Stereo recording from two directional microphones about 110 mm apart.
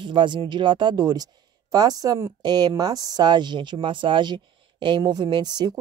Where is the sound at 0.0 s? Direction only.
45° right (ahead or behind).